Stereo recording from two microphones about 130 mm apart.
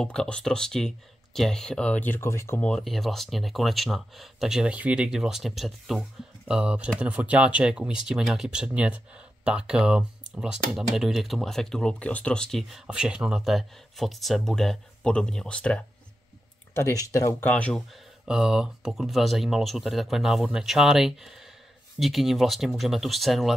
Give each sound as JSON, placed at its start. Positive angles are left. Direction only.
{"t": 0.0, "sound": "speech", "side_deg": 5}
{"t": 2.7, "sound": "speech", "side_deg": 0}
{"t": 16.7, "sound": "speech", "side_deg": 20}
{"t": 17.5, "sound": "speech", "side_deg": 10}
{"t": 18.2, "sound": "speech", "side_deg": -5}